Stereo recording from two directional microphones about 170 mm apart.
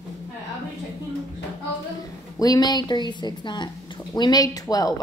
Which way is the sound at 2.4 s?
25° left (ahead or behind).